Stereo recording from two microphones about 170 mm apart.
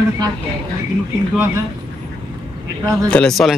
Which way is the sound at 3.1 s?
5° left (ahead or behind).